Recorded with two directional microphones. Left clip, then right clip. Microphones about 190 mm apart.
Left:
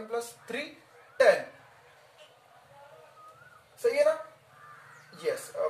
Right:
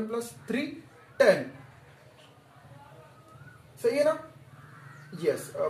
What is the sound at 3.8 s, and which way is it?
Speech, 10° right (ahead or behind).